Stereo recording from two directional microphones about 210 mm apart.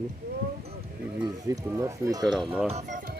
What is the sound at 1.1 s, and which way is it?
Speech, 15° right (ahead or behind).